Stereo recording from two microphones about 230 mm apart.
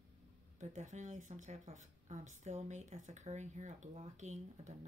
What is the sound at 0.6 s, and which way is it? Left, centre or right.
Speech, right.